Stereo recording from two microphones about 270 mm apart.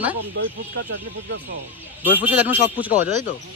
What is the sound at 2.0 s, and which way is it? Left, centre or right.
Speech, centre.